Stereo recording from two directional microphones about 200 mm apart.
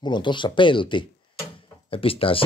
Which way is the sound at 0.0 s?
20° left (ahead or behind).